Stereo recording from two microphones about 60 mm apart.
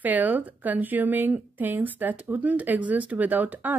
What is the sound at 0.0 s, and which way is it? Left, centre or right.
Speech, right.